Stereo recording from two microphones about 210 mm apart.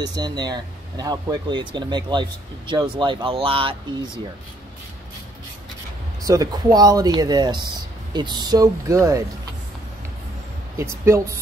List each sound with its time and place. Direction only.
0.1 s speech: 20° right (ahead or behind)
6.2 s speech: 15° right (ahead or behind)
10.8 s speech: 15° right (ahead or behind)